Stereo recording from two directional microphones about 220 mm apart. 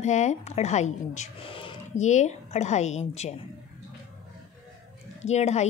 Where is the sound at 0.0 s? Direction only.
30° left (ahead or behind).